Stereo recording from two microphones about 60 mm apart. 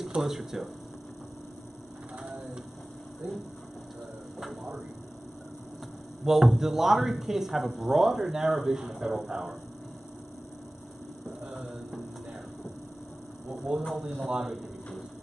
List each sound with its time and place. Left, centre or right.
0.0 s speech: centre
6.2 s speech: centre
11.4 s a sound: centre
13.7 s speech: centre